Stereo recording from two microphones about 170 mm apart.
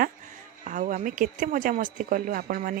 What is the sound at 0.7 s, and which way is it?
Speech, 50° right (ahead or behind).